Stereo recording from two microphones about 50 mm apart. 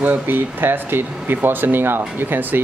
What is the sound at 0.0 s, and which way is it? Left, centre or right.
Speech, right.